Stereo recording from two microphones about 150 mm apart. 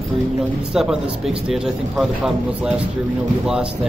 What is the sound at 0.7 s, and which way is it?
A man's voice, 5° right (ahead or behind).